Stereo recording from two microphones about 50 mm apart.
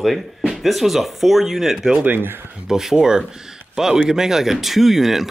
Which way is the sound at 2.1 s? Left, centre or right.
Right.